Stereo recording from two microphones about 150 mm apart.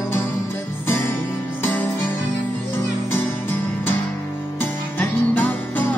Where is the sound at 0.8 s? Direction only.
15° left (ahead or behind).